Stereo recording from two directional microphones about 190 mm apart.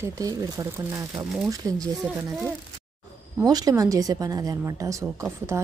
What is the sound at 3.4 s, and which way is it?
Speech, 20° right (ahead or behind).